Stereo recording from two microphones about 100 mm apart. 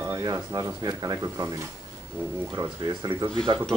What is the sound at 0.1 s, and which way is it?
Speech, 35° right (ahead or behind).